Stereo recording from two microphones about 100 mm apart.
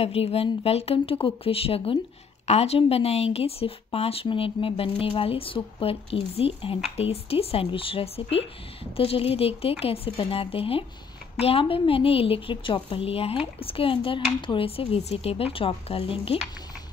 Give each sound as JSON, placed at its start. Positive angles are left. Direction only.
{"t": 0.0, "sound": "speech", "side_deg": 75}
{"t": 2.4, "sound": "speech", "side_deg": 90}